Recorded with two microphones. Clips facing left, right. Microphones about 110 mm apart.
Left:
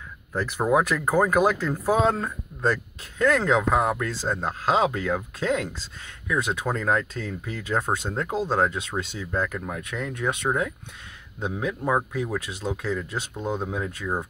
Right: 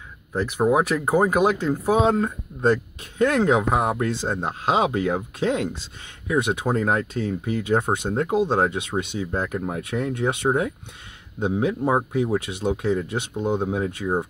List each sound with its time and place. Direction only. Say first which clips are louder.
0.7 s speech: right 1 dB; 25° right (ahead or behind)